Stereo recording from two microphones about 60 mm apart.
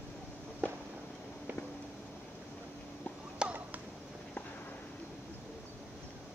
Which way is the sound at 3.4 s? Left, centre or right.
Right.